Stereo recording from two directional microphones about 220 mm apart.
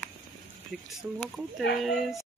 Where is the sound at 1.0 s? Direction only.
5° right (ahead or behind).